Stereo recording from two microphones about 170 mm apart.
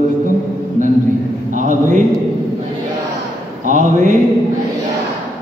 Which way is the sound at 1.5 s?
50° right (ahead or behind).